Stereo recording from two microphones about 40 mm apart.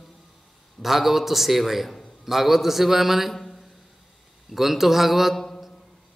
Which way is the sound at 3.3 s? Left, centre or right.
Centre.